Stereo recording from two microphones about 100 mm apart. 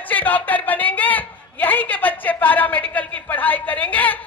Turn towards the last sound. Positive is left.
turn(degrees=15)  # may be behind; listen again after turning